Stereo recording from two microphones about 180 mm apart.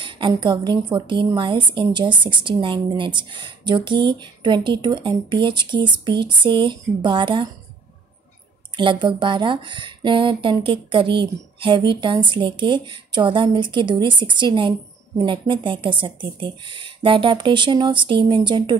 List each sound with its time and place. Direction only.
0.0 s a sound: 30° right (ahead or behind)
0.3 s speech: 25° right (ahead or behind)
8.7 s speech: 25° right (ahead or behind)